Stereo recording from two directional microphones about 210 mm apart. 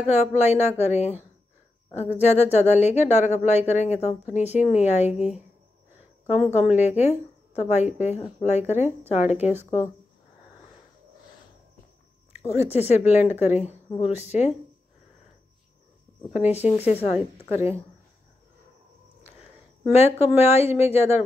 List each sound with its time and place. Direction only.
0.1 s speech: 30° left (ahead or behind)
6.7 s speech: 30° left (ahead or behind)
12.4 s speech: 30° left (ahead or behind)
16.6 s speech: 30° left (ahead or behind)
19.9 s speech: 30° left (ahead or behind)